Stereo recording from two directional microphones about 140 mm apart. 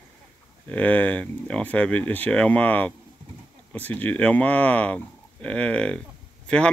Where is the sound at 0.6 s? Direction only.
10° left (ahead or behind).